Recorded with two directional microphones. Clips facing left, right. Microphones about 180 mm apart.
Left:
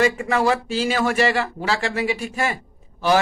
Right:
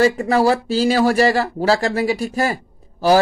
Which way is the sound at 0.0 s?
35° right (ahead or behind).